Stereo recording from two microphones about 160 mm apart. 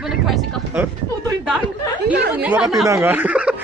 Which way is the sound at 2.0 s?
10° right (ahead or behind).